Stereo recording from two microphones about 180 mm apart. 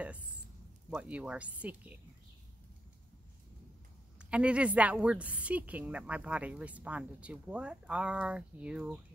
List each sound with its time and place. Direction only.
0.0 s a sound: 5° right (ahead or behind)
0.8 s a woman's voice: 5° right (ahead or behind)
4.2 s a woman's voice: 5° right (ahead or behind)